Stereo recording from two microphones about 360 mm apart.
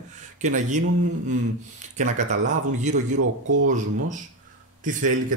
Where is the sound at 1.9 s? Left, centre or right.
Centre.